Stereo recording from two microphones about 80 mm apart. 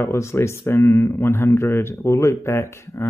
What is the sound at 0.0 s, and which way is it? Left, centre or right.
Speech, left.